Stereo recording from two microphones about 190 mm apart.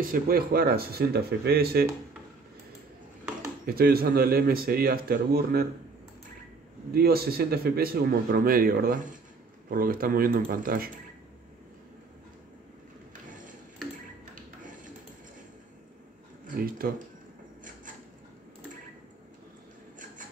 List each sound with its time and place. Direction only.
0.0 s a man's voice: 50° right (ahead or behind)
3.6 s a man's voice: 50° right (ahead or behind)
6.9 s a man's voice: 55° right (ahead or behind)
14.3 s a sound: 45° right (ahead or behind)
16.4 s speech: 50° right (ahead or behind)